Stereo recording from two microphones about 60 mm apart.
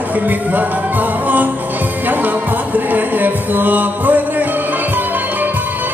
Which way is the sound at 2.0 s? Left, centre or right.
Right.